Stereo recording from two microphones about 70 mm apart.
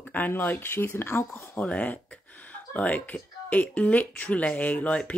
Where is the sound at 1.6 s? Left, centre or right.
Left.